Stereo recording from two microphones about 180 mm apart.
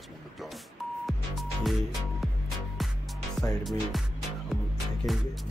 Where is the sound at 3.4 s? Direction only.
Centre (ahead or behind).